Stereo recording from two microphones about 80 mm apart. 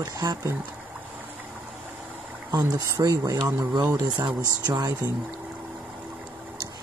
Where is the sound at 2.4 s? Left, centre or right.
Right.